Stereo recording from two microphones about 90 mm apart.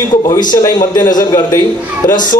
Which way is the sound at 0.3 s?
40° left (ahead or behind).